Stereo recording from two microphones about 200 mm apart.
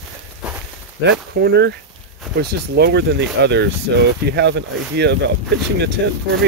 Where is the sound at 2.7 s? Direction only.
55° right (ahead or behind).